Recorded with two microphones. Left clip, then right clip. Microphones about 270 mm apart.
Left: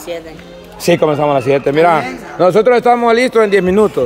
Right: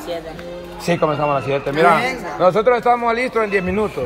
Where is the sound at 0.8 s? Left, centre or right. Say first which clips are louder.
Left 6 dB; left.